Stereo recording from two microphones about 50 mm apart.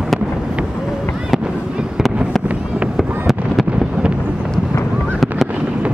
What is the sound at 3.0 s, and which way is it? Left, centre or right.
Fireworks, centre.